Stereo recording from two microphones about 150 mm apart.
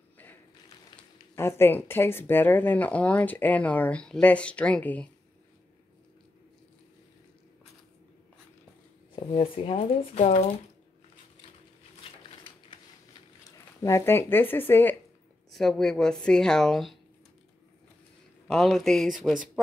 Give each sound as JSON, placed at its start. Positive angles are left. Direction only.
{"t": 1.3, "sound": "speech", "side_deg": 15}
{"t": 9.1, "sound": "speech", "side_deg": 40}
{"t": 9.8, "sound": "speech", "side_deg": 50}
{"t": 13.4, "sound": "speech", "side_deg": 20}
{"t": 15.5, "sound": "speech", "side_deg": 0}
{"t": 18.5, "sound": "speech", "side_deg": 0}